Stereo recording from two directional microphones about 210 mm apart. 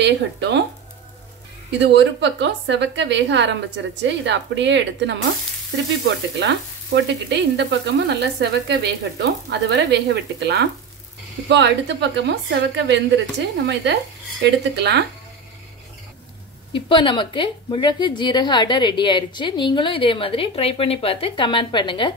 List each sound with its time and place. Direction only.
0.0 s a woman's voice: 55° right (ahead or behind)
1.8 s a woman's voice: 55° right (ahead or behind)
16.7 s a woman's voice: 25° left (ahead or behind)